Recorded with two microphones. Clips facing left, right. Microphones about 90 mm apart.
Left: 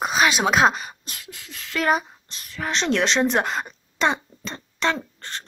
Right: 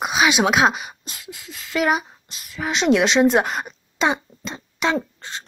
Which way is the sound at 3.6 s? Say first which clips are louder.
Right 1 dB; 10° right (ahead or behind).